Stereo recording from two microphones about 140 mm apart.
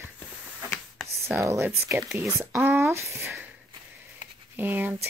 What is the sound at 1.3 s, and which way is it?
Speech, 20° right (ahead or behind).